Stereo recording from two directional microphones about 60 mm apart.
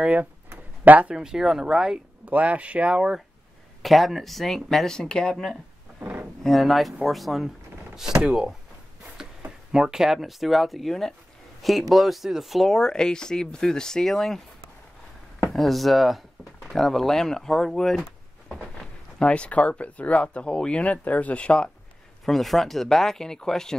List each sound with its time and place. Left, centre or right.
0.0 s speech: right
1.1 s speech: centre
2.2 s speech: right
3.8 s speech: centre
5.9 s a sound: right
6.4 s speech: centre
9.7 s speech: centre
15.5 s speech: centre
18.8 s speech: centre
22.2 s speech: centre